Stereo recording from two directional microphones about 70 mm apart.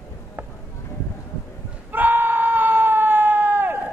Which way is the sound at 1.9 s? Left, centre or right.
Right.